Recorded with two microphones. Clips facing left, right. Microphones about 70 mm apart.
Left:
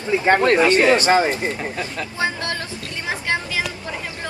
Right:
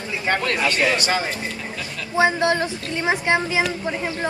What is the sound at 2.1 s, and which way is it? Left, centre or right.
Speech, right.